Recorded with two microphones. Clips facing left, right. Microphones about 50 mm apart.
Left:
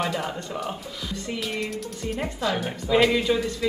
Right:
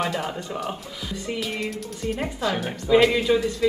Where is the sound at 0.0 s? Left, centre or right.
Centre.